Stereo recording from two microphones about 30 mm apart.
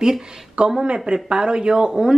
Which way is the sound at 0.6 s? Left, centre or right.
Right.